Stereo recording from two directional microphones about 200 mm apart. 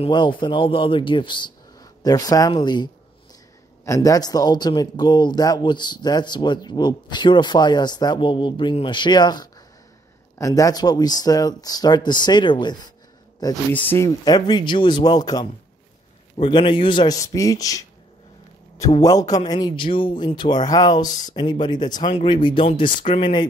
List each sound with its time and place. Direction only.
0.0 s a man's voice: 25° left (ahead or behind)
13.7 s a man's voice: 10° left (ahead or behind)
19.0 s a man's voice: 20° left (ahead or behind)